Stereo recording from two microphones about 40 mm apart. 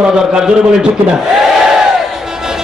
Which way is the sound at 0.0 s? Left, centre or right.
Right.